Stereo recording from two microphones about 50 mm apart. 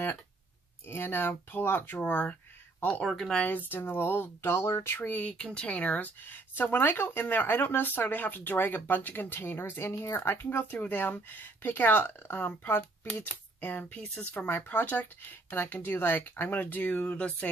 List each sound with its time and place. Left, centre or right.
0.8 s speech: left
3.0 s speech: centre
3.3 s speech: left
5.0 s speech: left
5.4 s speech: left